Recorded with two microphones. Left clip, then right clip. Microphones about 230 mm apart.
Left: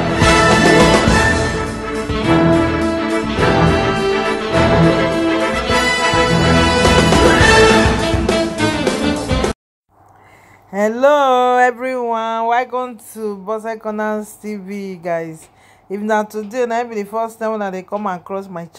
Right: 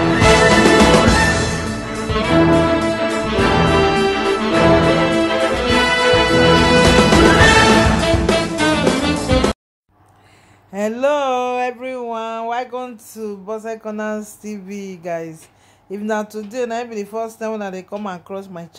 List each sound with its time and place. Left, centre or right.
0.0 s music: centre
10.7 s a sound: centre
13.2 s speech: centre